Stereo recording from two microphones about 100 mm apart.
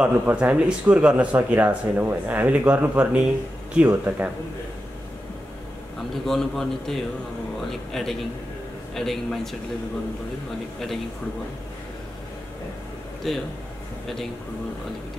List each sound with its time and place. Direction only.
0.0 s speech: 15° right (ahead or behind)
6.2 s a man's voice: 5° left (ahead or behind)
13.2 s a man's voice: 5° left (ahead or behind)